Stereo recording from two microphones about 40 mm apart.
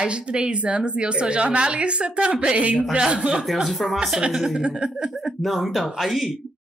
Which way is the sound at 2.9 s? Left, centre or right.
Right.